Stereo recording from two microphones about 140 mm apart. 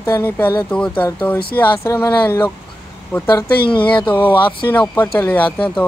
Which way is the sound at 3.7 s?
35° left (ahead or behind).